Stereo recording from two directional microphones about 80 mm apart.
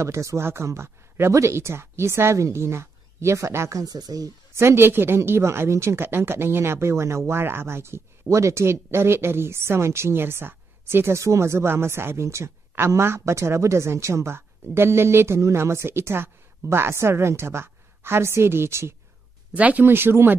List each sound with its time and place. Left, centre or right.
0.0 s speech: right
3.8 s speech: right
4.6 s speech: right
19.5 s speech: centre